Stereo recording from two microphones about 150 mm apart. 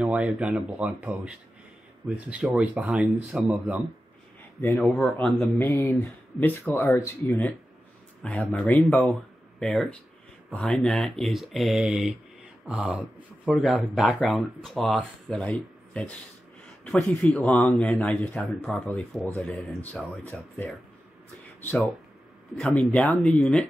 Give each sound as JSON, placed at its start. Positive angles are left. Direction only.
{"t": 0.0, "sound": "speech", "side_deg": -5}
{"t": 4.6, "sound": "speech", "side_deg": 15}